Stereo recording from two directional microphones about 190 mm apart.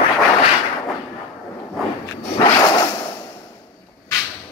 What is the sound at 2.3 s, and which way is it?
Whip, 20° left (ahead or behind).